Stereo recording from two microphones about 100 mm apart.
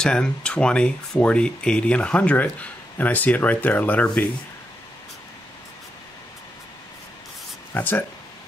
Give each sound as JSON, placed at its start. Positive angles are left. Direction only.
{"t": 0.0, "sound": "speech", "side_deg": 10}
{"t": 7.7, "sound": "speech", "side_deg": 20}